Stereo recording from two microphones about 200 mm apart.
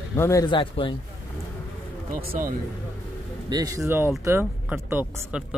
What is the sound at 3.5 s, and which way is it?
Speech, 20° right (ahead or behind).